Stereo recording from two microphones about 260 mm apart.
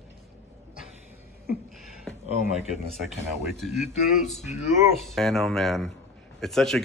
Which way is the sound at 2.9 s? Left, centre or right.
Centre.